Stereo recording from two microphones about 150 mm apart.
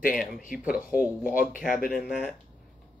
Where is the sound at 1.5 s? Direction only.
70° left (ahead or behind).